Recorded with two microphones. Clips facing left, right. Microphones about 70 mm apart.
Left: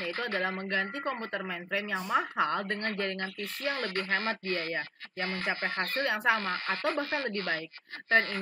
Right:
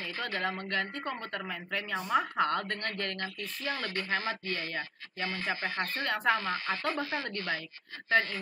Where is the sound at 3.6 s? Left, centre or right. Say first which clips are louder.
Left 2 dB; left.